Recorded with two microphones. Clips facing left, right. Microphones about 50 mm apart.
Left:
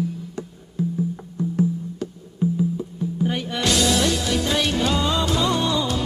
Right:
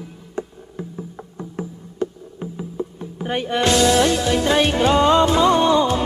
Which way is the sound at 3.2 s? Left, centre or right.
Right.